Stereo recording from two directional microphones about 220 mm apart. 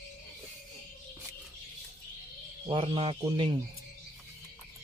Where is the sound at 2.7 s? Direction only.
25° right (ahead or behind).